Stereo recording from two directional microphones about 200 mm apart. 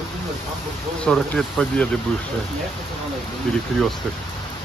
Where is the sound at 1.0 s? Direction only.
5° left (ahead or behind).